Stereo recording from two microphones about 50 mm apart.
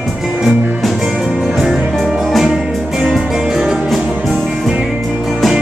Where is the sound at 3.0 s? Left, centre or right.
Centre.